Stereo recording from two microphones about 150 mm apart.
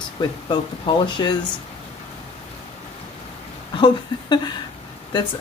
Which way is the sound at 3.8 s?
30° left (ahead or behind).